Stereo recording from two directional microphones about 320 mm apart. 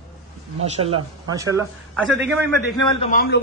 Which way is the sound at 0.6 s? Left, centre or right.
Centre.